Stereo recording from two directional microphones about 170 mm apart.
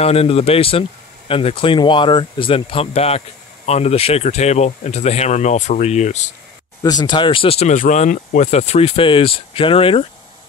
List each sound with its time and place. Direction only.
0.0 s speech: 35° left (ahead or behind)
6.8 s speech: 25° left (ahead or behind)
7.7 s speech: 45° left (ahead or behind)